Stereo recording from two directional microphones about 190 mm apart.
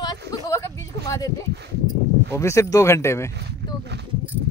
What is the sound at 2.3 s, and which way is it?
Speech, 15° left (ahead or behind).